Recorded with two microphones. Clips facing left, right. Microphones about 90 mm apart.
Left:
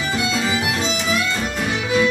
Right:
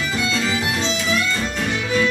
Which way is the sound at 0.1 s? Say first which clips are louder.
Left 2 dB; 10° left (ahead or behind).